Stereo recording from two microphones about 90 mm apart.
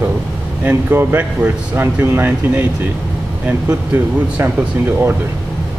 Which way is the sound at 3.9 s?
25° right (ahead or behind).